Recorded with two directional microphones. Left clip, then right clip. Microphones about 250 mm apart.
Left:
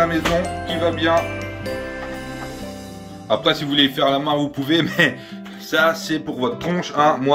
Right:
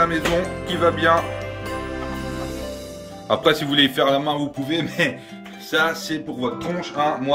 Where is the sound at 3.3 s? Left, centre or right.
Centre.